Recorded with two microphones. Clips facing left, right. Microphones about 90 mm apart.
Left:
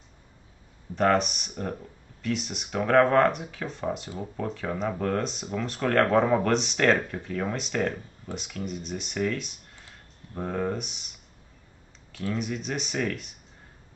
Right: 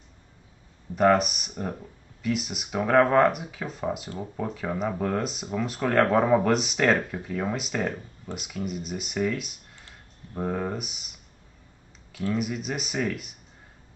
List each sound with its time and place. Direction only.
0.9 s speech: 5° right (ahead or behind)
12.1 s speech: 5° right (ahead or behind)